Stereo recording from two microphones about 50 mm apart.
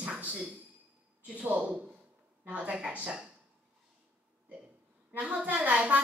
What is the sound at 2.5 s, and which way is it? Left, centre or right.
Speech, right.